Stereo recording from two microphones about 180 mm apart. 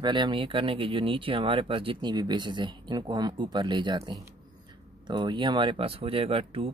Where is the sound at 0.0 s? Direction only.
25° right (ahead or behind).